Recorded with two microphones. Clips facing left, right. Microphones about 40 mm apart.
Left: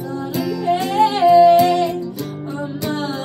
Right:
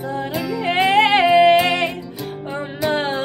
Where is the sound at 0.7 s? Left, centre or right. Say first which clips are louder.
Right 2 dB; right.